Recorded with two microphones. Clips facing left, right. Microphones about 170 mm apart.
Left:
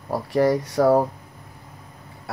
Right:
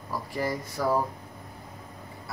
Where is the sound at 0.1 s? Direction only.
75° left (ahead or behind).